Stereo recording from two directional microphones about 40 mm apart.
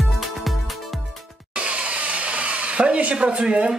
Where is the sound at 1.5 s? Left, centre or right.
Right.